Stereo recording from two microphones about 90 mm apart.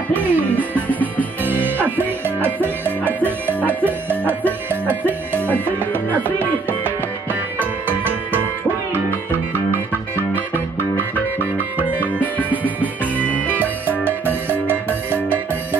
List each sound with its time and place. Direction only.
0.1 s music: 20° right (ahead or behind)
0.7 s music: 20° left (ahead or behind)
1.4 s music: 20° right (ahead or behind)
9.5 s music: 25° right (ahead or behind)
12.2 s music: 20° left (ahead or behind)
14.0 s music: 25° right (ahead or behind)